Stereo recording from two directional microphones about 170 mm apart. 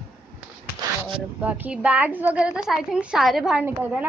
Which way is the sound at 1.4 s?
10° right (ahead or behind).